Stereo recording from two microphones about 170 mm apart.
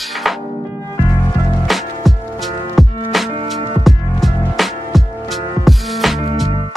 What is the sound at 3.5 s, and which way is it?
Music, 30° right (ahead or behind).